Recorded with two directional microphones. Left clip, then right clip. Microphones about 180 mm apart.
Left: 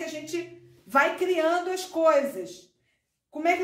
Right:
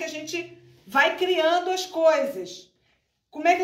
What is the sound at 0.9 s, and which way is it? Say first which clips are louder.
A woman's voice: right 2 dB; 45° left (ahead or behind).